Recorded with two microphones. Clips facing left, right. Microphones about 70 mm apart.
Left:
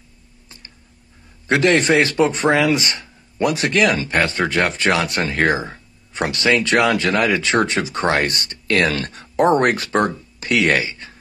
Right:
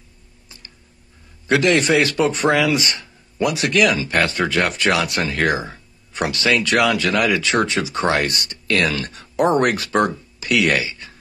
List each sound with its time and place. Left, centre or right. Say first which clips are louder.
1.5 s speech: left 1 dB; left
3.3 s speech: left 1 dB; left
3.6 s speech: right 1 dB; left
4.1 s speech: even; left